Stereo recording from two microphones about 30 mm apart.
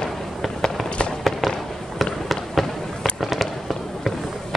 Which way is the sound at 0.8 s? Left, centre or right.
Left.